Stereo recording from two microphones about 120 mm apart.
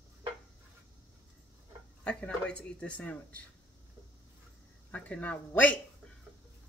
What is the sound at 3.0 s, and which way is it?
Cutlery, 10° left (ahead or behind).